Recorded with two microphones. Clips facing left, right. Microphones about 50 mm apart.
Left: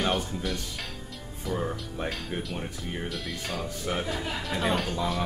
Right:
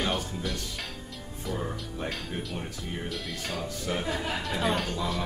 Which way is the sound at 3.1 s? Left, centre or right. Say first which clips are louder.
Left 1 dB; centre.